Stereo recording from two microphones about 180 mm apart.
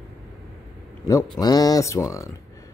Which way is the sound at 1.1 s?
20° left (ahead or behind).